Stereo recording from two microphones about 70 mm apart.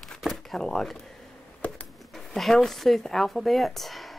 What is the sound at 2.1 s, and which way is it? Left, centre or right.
Speech, centre.